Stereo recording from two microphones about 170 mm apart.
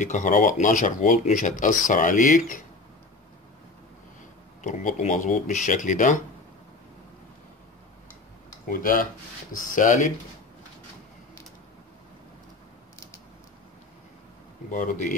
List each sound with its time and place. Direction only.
0.0 s speech: 45° left (ahead or behind)
4.6 s speech: 50° left (ahead or behind)
8.6 s speech: 55° left (ahead or behind)
14.7 s speech: 50° left (ahead or behind)